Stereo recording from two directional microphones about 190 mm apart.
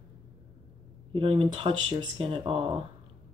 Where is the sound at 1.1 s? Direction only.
30° right (ahead or behind).